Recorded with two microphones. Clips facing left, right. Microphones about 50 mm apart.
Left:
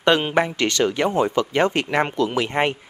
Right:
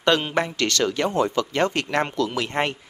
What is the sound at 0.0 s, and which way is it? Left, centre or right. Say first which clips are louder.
Speech: left 3 dB; centre.